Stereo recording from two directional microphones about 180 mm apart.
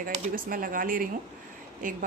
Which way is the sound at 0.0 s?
50° right (ahead or behind).